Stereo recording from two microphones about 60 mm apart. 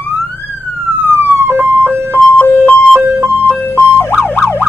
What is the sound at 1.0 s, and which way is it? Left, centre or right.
Police car, right.